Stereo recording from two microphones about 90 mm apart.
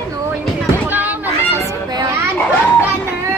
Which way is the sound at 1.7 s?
50° right (ahead or behind).